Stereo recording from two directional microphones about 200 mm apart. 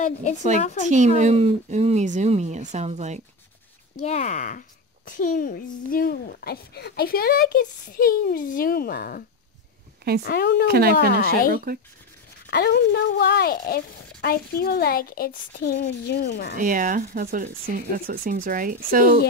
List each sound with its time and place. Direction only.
0.6 s speech: 35° left (ahead or behind)
0.8 s speech: 40° right (ahead or behind)
4.0 s speech: 35° left (ahead or behind)
10.2 s speech: 50° left (ahead or behind)
10.7 s speech: 50° right (ahead or behind)
12.4 s speech: 55° left (ahead or behind)
16.5 s speech: 45° right (ahead or behind)